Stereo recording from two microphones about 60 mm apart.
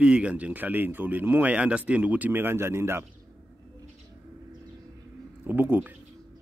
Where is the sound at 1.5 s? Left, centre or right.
Centre; by 3.0 s right.